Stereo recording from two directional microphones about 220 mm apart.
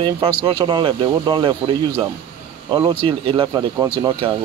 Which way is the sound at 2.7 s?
25° right (ahead or behind).